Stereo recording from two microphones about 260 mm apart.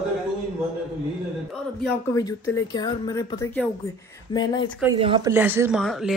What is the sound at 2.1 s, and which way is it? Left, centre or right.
Speech, centre.